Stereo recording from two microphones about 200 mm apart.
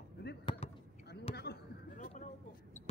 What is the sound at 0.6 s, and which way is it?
Basketball bounce, 30° left (ahead or behind).